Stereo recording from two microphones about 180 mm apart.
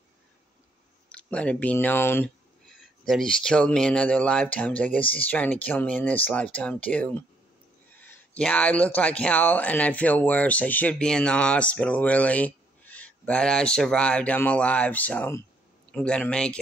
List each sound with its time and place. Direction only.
1.0 s speech: 5° left (ahead or behind)